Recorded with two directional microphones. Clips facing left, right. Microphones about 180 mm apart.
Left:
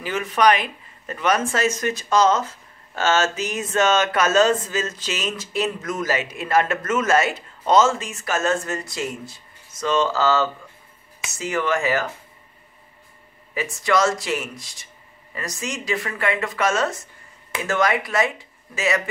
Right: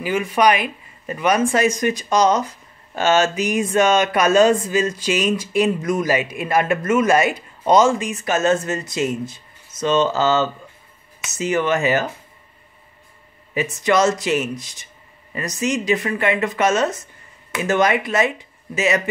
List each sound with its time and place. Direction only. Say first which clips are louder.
0.0 s speech: right 2 dB; 10° right (ahead or behind)
13.6 s speech: right 3 dB; 20° right (ahead or behind)